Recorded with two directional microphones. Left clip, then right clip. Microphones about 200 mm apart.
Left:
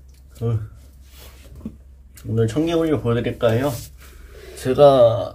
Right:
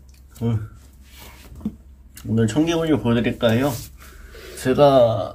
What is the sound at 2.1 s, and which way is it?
Speech, 10° right (ahead or behind).